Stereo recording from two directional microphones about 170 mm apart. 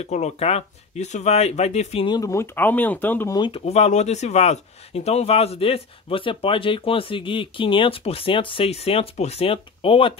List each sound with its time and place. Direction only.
0.0 s speech: 40° left (ahead or behind)
2.0 s speech: 20° left (ahead or behind)
3.3 s speech: 25° left (ahead or behind)
3.6 s speech: 40° left (ahead or behind)